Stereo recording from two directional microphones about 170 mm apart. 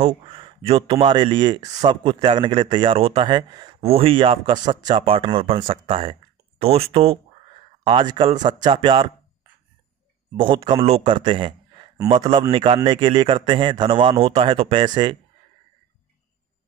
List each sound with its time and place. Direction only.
0.0 s speech: 30° right (ahead or behind)
10.3 s speech: 30° right (ahead or behind)